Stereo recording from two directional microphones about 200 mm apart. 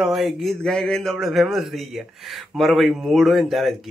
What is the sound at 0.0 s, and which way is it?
Speech, centre (ahead or behind).